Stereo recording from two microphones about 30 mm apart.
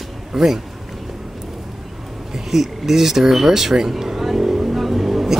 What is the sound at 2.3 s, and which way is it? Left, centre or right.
Speech, centre.